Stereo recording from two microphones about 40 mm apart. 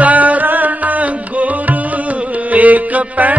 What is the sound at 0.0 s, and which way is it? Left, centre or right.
Music, right.